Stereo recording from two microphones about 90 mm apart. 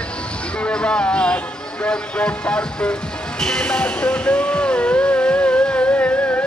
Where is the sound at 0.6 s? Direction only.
10° left (ahead or behind).